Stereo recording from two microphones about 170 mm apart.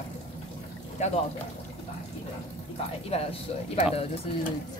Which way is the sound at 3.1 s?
35° left (ahead or behind).